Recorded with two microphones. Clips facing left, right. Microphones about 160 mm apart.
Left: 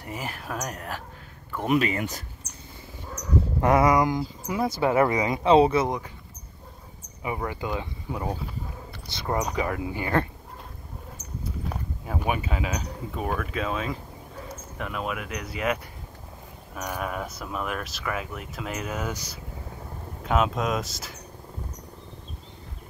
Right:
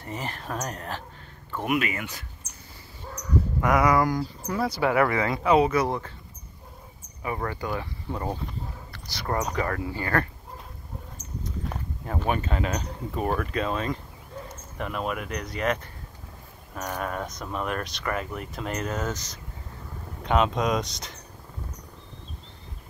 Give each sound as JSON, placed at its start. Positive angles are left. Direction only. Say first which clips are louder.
{"t": 0.0, "sound": "speech", "louder": "even", "side_deg": 10}
{"t": 1.8, "sound": "speech", "louder": "left 4 dB", "side_deg": 35}
{"t": 3.6, "sound": "speech", "louder": "left 2 dB", "side_deg": 25}
{"t": 5.9, "sound": "speech", "louder": "even", "side_deg": 10}
{"t": 7.4, "sound": "speech", "louder": "even", "side_deg": 15}
{"t": 8.9, "sound": "speech", "louder": "left 1 dB", "side_deg": 20}
{"t": 9.4, "sound": "speech", "louder": "even", "side_deg": 0}
{"t": 9.7, "sound": "speech", "louder": "left 1 dB", "side_deg": 15}
{"t": 11.4, "sound": "speech", "louder": "left 1 dB", "side_deg": 5}